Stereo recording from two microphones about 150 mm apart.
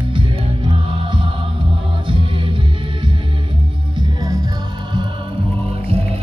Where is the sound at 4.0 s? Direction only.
25° right (ahead or behind).